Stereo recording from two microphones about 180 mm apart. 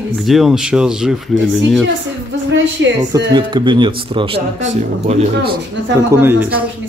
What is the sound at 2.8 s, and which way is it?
Speech, 90° right.